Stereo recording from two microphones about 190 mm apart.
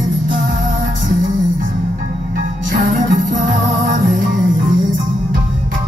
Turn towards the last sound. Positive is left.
turn(degrees=-45)  # may be behind; listen again after turning